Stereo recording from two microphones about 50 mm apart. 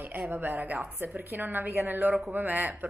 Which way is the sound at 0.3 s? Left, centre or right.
Right.